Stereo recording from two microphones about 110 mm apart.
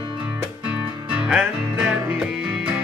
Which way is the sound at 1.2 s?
5° right (ahead or behind).